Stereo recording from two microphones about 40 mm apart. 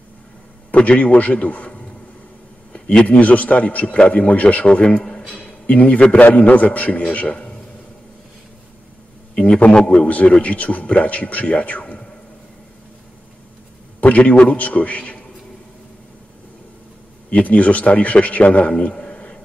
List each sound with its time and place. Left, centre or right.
0.7 s a man's voice: left
2.7 s a sound: left
3.2 s a man's voice: left
9.3 s a man's voice: left
14.0 s a man's voice: left
17.3 s a man's voice: left
18.9 s a sound: left